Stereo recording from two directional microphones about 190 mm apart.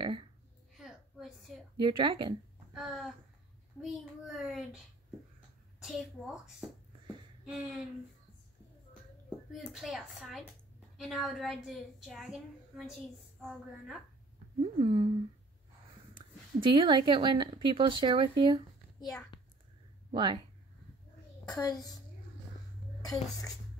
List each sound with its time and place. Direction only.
0.0 s a sound: 25° right (ahead or behind)
0.8 s a sound: centre (ahead or behind)
1.8 s speech: 25° right (ahead or behind)
2.7 s a sound: centre (ahead or behind)
3.8 s a child's voice: 5° right (ahead or behind)
5.8 s a woman's voice: centre (ahead or behind)
9.5 s a woman's voice: centre (ahead or behind)
14.6 s speech: 25° right (ahead or behind)
16.2 s speech: 25° right (ahead or behind)
20.1 s speech: 25° right (ahead or behind)
21.5 s a child's voice: 20° left (ahead or behind)
23.0 s a child's voice: 20° left (ahead or behind)